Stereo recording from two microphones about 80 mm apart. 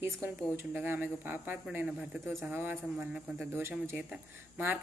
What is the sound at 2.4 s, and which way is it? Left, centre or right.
Speech, right.